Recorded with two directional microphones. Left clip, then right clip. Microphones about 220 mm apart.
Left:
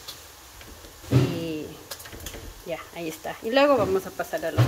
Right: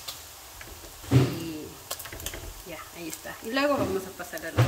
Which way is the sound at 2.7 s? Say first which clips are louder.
Left 7 dB; 10° left (ahead or behind).